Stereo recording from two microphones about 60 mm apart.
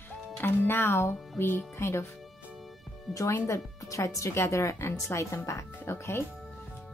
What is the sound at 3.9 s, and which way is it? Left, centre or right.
Speech, left.